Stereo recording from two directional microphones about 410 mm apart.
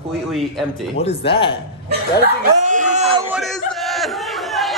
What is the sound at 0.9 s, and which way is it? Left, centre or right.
Speech, centre.